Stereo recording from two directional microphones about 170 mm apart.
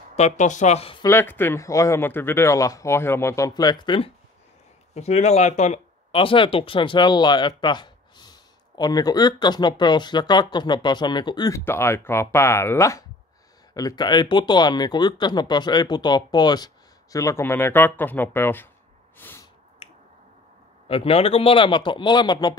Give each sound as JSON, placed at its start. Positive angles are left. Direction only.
{"t": 0.1, "sound": "speech", "side_deg": 45}
{"t": 1.0, "sound": "speech", "side_deg": 15}
{"t": 4.9, "sound": "speech", "side_deg": 40}
{"t": 6.1, "sound": "speech", "side_deg": 30}
{"t": 19.1, "sound": "a sound", "side_deg": 10}
{"t": 20.9, "sound": "speech", "side_deg": 35}